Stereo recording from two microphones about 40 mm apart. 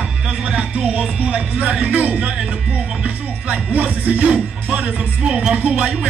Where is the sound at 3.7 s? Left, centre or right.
Right.